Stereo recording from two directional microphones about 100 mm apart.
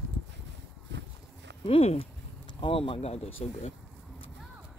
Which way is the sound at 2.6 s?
60° left (ahead or behind).